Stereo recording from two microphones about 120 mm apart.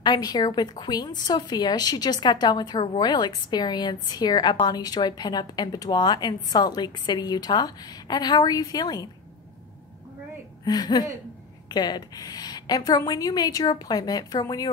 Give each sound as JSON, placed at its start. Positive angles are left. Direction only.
{"t": 0.0, "sound": "a woman's voice", "side_deg": 35}
{"t": 10.6, "sound": "a woman's voice", "side_deg": 35}